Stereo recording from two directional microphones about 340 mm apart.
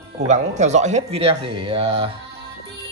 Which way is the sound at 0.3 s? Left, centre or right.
Centre.